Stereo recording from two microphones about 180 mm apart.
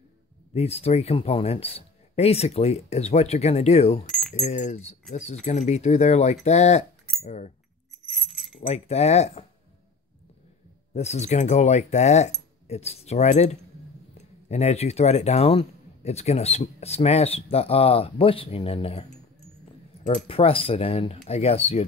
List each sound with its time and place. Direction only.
0.6 s speech: 35° left (ahead or behind)
8.2 s keys jangling: 5° right (ahead or behind)
8.5 s speech: 35° left (ahead or behind)
11.0 s speech: 40° left (ahead or behind)
20.2 s speech: 30° left (ahead or behind)